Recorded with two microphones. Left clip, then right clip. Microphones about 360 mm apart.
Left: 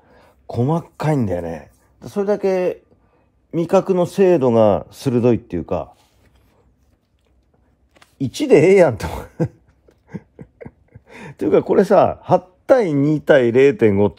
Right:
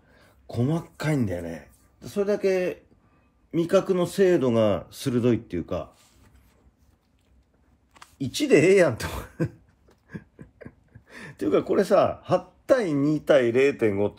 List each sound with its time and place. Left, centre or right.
0.1 s speech: centre
3.5 s speech: centre
8.2 s speech: centre
11.1 s speech: centre